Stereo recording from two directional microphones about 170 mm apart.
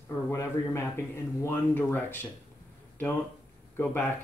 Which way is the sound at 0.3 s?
15° left (ahead or behind).